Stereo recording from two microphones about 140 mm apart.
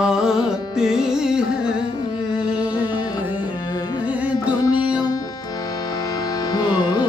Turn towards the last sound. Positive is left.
turn(degrees=25)  # may be behind; listen again after turning